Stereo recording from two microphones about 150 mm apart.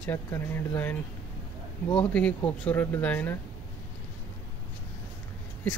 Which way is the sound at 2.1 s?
10° left (ahead or behind).